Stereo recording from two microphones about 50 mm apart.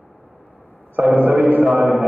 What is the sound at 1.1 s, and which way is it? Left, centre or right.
Speech, right.